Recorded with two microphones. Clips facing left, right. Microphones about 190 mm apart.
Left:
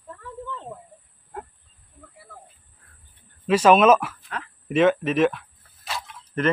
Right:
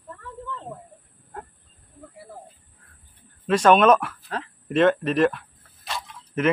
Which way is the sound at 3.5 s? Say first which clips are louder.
Left 1 dB; 5° left (ahead or behind).